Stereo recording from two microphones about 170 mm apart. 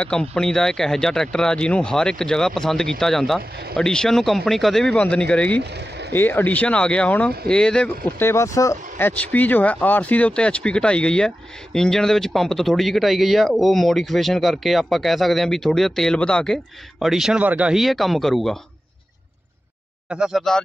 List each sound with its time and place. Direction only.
0.0 s speech: 5° left (ahead or behind)
5.6 s speech: 80° right
6.1 s speech: 10° left (ahead or behind)
8.2 s speech: 15° left (ahead or behind)
20.1 s speech: 5° right (ahead or behind)